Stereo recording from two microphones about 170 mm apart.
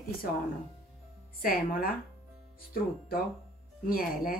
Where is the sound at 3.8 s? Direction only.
60° left (ahead or behind).